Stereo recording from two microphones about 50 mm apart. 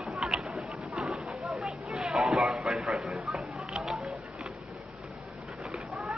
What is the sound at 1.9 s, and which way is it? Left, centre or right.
Children playing, centre.